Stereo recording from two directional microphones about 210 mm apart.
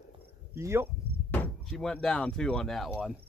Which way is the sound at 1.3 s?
5° left (ahead or behind).